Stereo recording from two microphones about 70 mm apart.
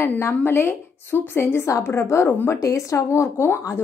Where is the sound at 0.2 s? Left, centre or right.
Left.